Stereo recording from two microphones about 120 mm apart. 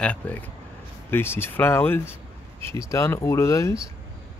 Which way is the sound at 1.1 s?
20° left (ahead or behind).